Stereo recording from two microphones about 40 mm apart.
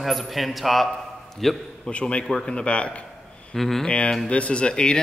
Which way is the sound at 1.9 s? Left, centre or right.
Left.